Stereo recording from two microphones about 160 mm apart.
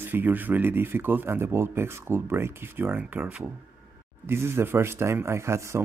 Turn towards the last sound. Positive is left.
turn(degrees=-15)  # may be behind; listen again after turning